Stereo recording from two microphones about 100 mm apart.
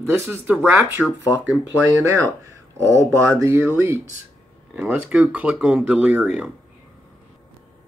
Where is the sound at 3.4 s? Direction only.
25° right (ahead or behind).